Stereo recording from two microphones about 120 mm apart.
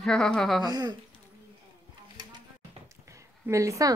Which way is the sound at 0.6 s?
35° right (ahead or behind).